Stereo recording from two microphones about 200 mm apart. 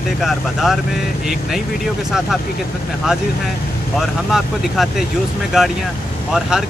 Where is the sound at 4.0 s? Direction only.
Centre (ahead or behind).